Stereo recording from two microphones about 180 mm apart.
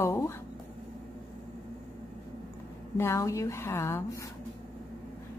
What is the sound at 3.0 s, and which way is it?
Speech, 15° left (ahead or behind).